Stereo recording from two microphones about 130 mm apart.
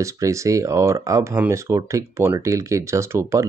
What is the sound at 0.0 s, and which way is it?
Speech, 25° right (ahead or behind).